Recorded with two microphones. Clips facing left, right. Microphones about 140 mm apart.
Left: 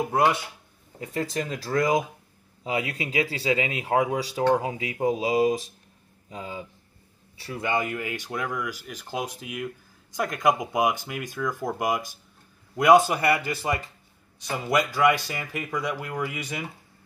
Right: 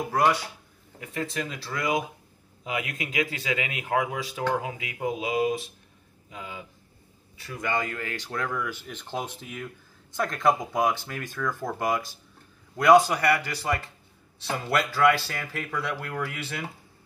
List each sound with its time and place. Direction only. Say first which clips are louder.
0.1 s a man's voice: right 2 dB; 25° left (ahead or behind)
7.6 s a man's voice: left 2 dB; 20° left (ahead or behind)